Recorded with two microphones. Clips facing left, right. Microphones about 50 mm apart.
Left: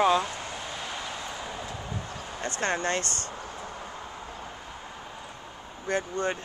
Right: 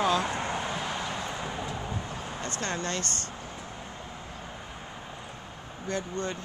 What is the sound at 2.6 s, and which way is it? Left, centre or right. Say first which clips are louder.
Speech: left 5 dB; left.